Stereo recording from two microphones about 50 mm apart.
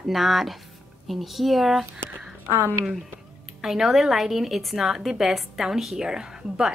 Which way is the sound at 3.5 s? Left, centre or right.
Centre.